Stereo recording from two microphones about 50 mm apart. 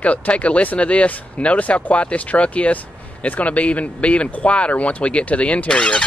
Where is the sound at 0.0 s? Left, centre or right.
Left.